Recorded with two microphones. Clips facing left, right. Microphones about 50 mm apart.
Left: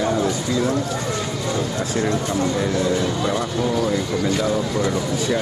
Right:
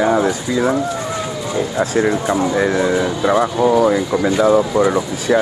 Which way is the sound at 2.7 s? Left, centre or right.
Right.